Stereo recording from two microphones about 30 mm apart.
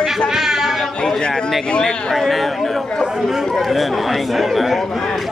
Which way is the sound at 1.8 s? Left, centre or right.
Centre.